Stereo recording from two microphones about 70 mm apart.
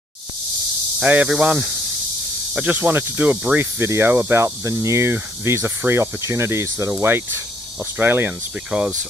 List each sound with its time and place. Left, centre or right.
1.0 s speech: right
3.8 s speech: right